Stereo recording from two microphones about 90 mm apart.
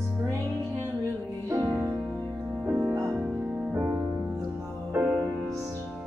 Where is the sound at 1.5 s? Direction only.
40° right (ahead or behind).